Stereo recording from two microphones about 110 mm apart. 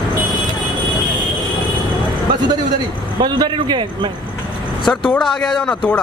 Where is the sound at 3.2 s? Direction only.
40° right (ahead or behind).